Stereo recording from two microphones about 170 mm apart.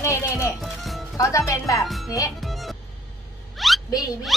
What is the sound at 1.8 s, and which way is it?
Speech, centre (ahead or behind).